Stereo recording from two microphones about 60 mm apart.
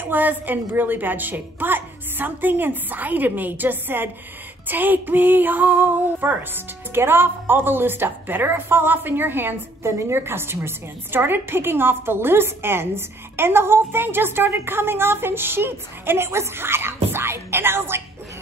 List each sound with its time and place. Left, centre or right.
0.0 s a woman's voice: right
9.8 s a woman's voice: right